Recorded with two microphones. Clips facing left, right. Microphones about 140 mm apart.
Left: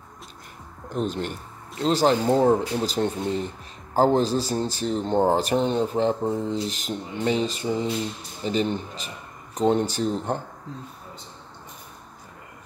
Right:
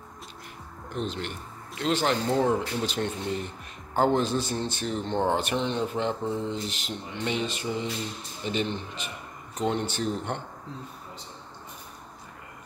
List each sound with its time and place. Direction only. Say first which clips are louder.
0.9 s speech: left 5 dB; 45° left (ahead or behind)